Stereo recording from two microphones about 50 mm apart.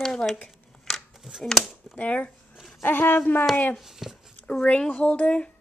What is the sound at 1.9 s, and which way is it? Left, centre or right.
Speech, left.